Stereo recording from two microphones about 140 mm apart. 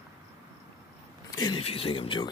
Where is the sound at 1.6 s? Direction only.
40° left (ahead or behind).